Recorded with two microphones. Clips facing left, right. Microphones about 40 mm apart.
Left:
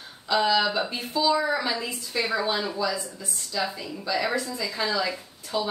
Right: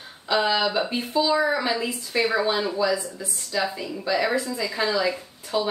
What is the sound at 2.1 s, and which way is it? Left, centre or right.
A woman's voice, right.